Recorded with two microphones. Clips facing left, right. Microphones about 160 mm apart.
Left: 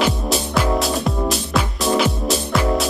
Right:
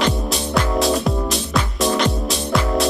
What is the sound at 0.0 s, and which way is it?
Music, centre (ahead or behind).